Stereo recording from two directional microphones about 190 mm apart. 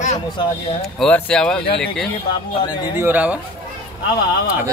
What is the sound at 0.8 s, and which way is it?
Speech, 5° left (ahead or behind).